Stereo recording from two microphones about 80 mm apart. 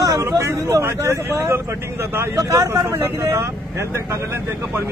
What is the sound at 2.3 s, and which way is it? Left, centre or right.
Speech, right.